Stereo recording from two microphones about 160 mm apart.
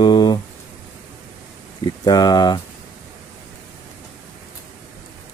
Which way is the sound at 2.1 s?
25° left (ahead or behind).